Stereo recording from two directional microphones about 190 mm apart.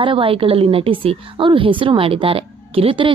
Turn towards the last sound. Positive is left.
turn(degrees=-30)  # may be behind; listen again after turning